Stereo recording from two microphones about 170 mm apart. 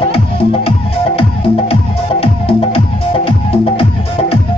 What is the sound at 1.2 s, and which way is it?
Music, 35° left (ahead or behind).